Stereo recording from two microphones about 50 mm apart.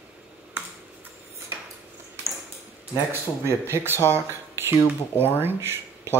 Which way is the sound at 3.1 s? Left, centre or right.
Right.